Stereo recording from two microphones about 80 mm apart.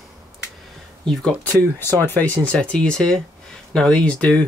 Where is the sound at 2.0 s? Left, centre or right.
Left.